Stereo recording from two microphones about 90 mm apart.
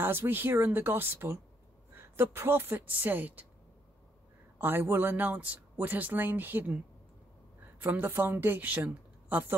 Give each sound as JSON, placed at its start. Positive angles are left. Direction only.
{"t": 0.0, "sound": "speech", "side_deg": -25}
{"t": 4.6, "sound": "speech", "side_deg": -20}
{"t": 7.8, "sound": "speech", "side_deg": -20}